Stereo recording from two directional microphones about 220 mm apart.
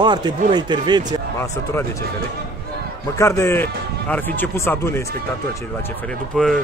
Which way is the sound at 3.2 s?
10° left (ahead or behind).